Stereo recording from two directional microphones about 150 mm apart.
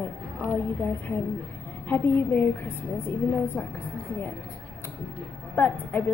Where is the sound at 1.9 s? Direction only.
15° left (ahead or behind).